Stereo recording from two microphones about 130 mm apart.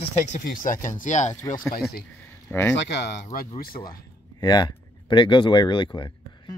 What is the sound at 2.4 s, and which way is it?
Speech, 20° left (ahead or behind).